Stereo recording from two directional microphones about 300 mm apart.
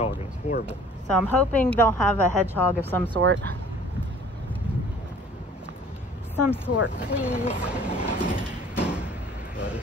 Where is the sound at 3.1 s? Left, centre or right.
Right.